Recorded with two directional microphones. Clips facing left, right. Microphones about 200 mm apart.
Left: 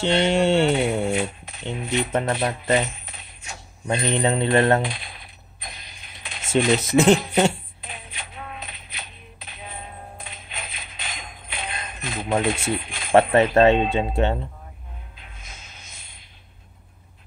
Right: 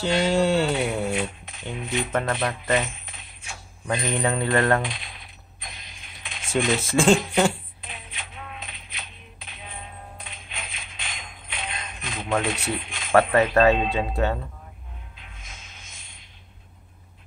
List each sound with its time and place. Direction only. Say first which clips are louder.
0.0 s speech: left 2 dB; 25° left (ahead or behind)
5.6 s mechanisms: left 2 dB; 35° left (ahead or behind)
6.5 s speech: left 4 dB; 25° left (ahead or behind)
8.1 s a sound: left 3 dB; 40° left (ahead or behind)
10.5 s music: left 1 dB; 40° left (ahead or behind)
11.5 s jingle bell: left 2 dB; 40° left (ahead or behind)
12.6 s speech: left 3 dB; 25° left (ahead or behind)